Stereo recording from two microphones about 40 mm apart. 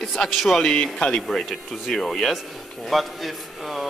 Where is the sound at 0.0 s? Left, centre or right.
Centre.